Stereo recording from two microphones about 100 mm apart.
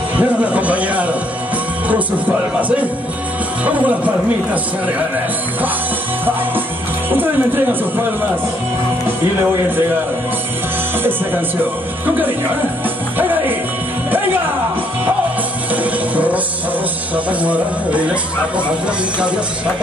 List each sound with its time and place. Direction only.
0.2 s a sound: 15° right (ahead or behind)
3.6 s speech: 15° right (ahead or behind)
7.1 s speech: 20° right (ahead or behind)
11.1 s speech: 20° right (ahead or behind)
13.2 s speech: 20° right (ahead or behind)
15.7 s music: 15° right (ahead or behind)
17.1 s speech: 15° right (ahead or behind)
19.1 s speech: 10° right (ahead or behind)